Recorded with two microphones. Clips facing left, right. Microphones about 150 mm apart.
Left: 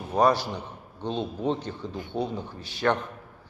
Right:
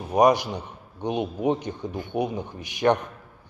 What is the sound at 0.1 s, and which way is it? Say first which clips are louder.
A man's voice: right 3 dB; 15° right (ahead or behind).